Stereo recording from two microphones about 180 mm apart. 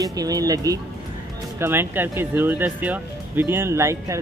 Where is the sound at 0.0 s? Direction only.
20° right (ahead or behind).